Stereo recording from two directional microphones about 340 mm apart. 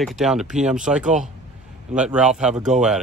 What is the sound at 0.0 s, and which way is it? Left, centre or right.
Speech, centre.